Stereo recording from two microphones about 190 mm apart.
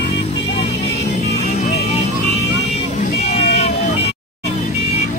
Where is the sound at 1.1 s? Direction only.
35° left (ahead or behind).